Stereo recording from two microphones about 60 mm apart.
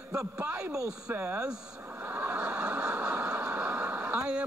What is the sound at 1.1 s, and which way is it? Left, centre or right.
Speech, right.